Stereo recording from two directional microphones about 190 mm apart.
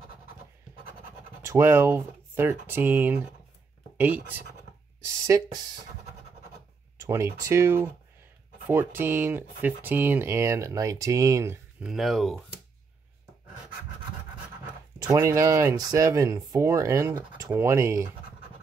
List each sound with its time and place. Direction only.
1.4 s speech: 15° right (ahead or behind)
7.0 s a sound: 15° right (ahead or behind)
7.4 s speech: 15° right (ahead or behind)
11.9 s speech: centre (ahead or behind)
15.0 s speech: 15° right (ahead or behind)